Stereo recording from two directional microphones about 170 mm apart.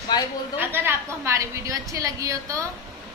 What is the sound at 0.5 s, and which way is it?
A woman's voice, 10° right (ahead or behind).